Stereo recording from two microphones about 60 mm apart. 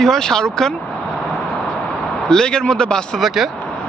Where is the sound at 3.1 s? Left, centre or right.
Centre.